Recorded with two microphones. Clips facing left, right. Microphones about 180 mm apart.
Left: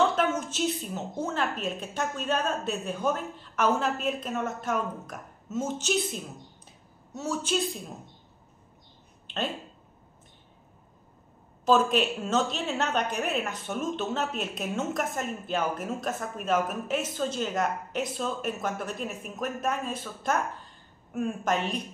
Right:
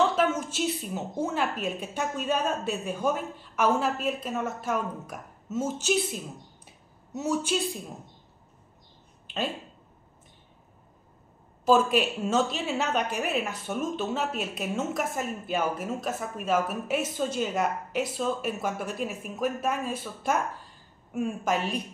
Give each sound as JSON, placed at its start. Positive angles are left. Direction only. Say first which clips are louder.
{"t": 0.1, "sound": "a woman's voice", "louder": "right 1 dB", "side_deg": -5}
{"t": 11.6, "sound": "a woman's voice", "louder": "right 1 dB", "side_deg": -5}